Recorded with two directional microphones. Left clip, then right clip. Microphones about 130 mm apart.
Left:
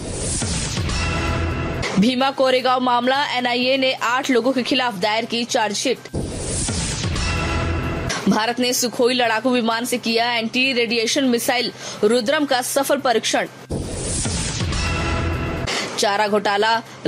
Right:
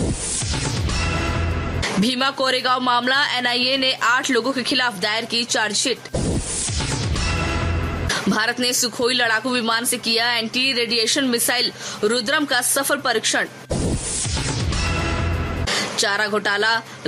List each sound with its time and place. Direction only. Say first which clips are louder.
2.0 s speech: left 3 dB; 25° left (ahead or behind)
8.1 s speech: even; 30° left (ahead or behind)
15.7 s speech: even; 30° left (ahead or behind)